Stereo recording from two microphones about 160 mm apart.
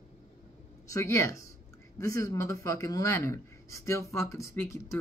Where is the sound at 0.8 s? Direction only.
20° left (ahead or behind).